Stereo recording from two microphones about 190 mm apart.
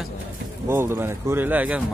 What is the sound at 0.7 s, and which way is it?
Speech, 10° right (ahead or behind).